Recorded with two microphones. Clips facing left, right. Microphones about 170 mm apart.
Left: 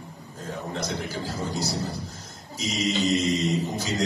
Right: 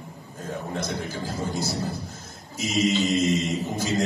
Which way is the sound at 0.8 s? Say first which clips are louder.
Even; 50° right (ahead or behind).